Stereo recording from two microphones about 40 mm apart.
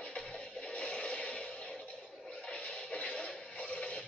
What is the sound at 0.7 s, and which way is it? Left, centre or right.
Music, left.